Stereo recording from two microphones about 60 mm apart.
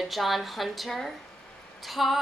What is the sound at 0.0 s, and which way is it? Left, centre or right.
A woman's voice, centre.